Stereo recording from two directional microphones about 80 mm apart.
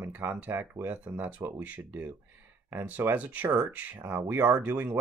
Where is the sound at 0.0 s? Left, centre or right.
Right.